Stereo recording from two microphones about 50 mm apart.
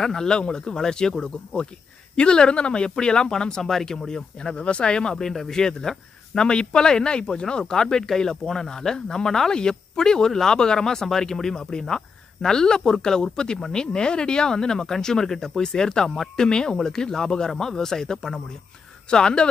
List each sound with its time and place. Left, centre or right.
0.0 s speech: centre